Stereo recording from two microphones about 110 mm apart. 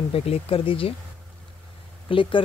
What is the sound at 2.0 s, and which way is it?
Speech, 50° left (ahead or behind).